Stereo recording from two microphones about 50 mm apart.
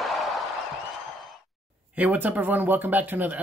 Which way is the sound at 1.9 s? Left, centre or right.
Right.